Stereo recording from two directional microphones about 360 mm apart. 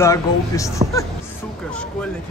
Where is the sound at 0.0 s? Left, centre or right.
Centre.